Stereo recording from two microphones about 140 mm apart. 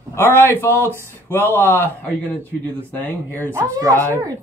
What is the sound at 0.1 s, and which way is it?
Speech, 15° left (ahead or behind).